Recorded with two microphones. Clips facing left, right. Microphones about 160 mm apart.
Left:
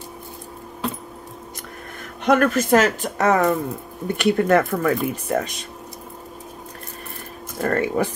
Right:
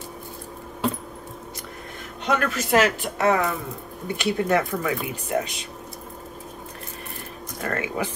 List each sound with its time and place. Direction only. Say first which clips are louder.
2.2 s speech: left 7 dB; 50° left (ahead or behind)
7.6 s speech: left 7 dB; 35° left (ahead or behind)